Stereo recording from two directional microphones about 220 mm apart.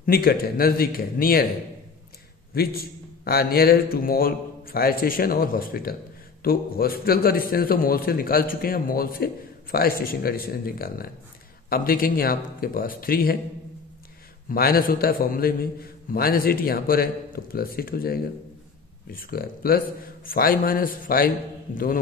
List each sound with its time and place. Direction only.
0.0 s a man's voice: 40° left (ahead or behind)
2.5 s a man's voice: 45° left (ahead or behind)
14.5 s a man's voice: 40° left (ahead or behind)